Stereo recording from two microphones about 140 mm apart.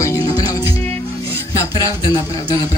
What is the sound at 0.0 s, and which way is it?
Music, 25° left (ahead or behind).